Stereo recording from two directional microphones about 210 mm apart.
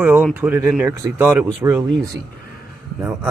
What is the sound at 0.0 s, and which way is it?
Speech, 5° right (ahead or behind).